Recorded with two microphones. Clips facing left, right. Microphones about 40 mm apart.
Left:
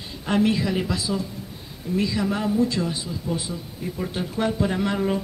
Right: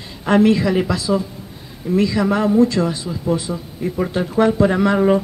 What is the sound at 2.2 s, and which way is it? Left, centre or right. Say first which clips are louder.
A man's voice: right 9 dB; right.